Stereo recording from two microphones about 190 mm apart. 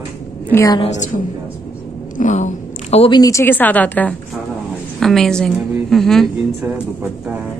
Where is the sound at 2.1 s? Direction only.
40° left (ahead or behind); by 7.4 s 5° right (ahead or behind).